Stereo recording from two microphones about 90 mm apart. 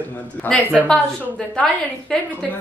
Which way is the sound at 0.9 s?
5° left (ahead or behind).